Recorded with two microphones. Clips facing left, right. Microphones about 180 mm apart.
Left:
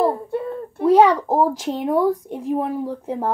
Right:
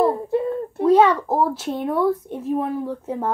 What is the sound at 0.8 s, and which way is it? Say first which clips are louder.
A child's voice: left 1 dB; 10° left (ahead or behind).